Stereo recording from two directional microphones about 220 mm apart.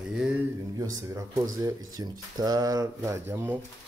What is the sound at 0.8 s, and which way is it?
Speech, 15° right (ahead or behind).